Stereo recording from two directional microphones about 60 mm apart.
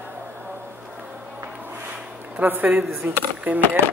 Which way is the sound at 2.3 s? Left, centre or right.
Right.